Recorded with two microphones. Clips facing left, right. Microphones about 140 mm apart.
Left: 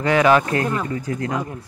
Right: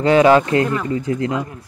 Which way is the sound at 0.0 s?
25° right (ahead or behind).